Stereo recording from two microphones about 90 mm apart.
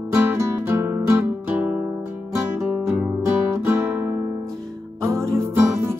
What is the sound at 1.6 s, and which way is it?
Music, 15° right (ahead or behind).